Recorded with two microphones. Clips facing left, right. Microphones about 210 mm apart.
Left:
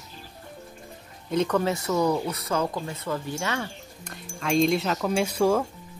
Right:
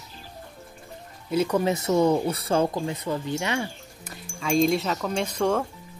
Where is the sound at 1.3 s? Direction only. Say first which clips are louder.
Right 1 dB; 5° right (ahead or behind).